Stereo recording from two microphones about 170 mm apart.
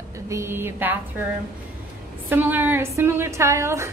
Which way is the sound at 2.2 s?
10° right (ahead or behind).